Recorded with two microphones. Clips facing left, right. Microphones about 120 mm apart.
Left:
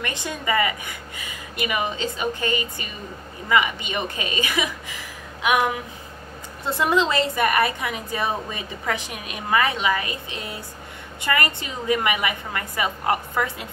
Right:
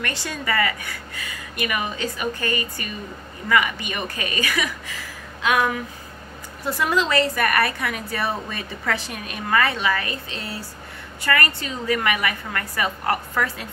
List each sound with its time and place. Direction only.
0.0 s a woman's voice: 20° left (ahead or behind)